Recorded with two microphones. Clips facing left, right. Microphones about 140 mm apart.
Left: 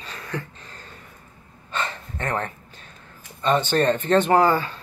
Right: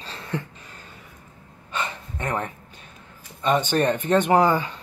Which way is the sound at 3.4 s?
15° right (ahead or behind).